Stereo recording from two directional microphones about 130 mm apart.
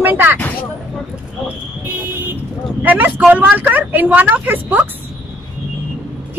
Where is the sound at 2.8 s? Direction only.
10° right (ahead or behind).